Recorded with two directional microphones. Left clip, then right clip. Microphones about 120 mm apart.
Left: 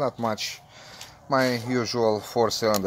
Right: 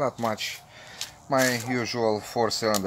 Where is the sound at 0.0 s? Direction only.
25° left (ahead or behind).